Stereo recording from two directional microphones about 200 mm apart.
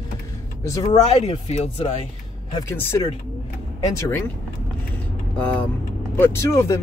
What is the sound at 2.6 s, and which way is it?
Speech, 15° left (ahead or behind).